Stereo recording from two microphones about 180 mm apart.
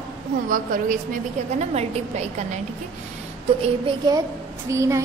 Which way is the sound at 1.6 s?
40° right (ahead or behind).